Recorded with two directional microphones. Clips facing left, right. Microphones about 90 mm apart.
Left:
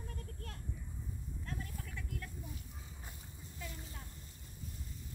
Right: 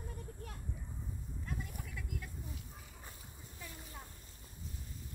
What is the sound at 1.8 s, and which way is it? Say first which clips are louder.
Vehicle: even; 5° right (ahead or behind).